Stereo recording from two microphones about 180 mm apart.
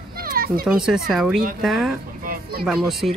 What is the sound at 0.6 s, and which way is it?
Speech, 5° right (ahead or behind).